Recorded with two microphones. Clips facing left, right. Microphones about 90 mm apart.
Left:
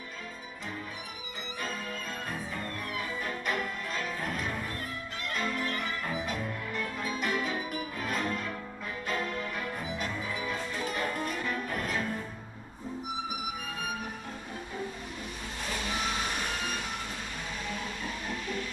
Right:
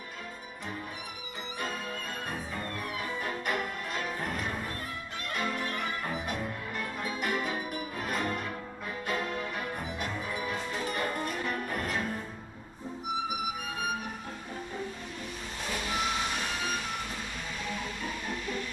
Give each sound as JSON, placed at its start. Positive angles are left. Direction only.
{"t": 1.6, "sound": "music", "side_deg": -15}
{"t": 5.3, "sound": "violin", "side_deg": -15}
{"t": 6.3, "sound": "music", "side_deg": -10}
{"t": 11.6, "sound": "music", "side_deg": -15}